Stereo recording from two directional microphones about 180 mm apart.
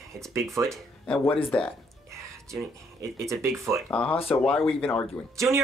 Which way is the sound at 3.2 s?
15° right (ahead or behind).